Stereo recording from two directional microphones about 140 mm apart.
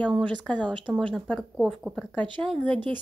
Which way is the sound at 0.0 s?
10° left (ahead or behind).